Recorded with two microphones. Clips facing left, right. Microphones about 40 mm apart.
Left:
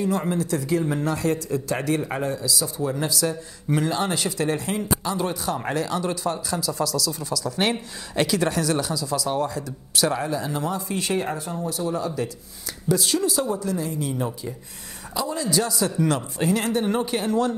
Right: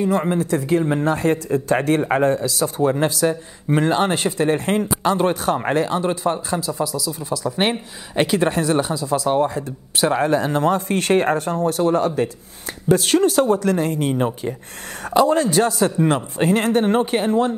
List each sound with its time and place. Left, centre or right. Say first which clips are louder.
0.0 s speech: right 5 dB; right
10.2 s speech: right 8 dB; right